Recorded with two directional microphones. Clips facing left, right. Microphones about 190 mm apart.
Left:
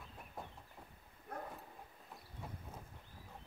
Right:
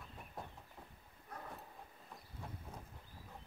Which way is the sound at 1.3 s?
55° left (ahead or behind).